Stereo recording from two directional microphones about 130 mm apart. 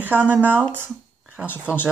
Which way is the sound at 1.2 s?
10° right (ahead or behind).